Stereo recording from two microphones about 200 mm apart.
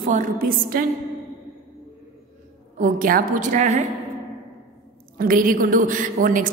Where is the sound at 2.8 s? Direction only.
45° right (ahead or behind).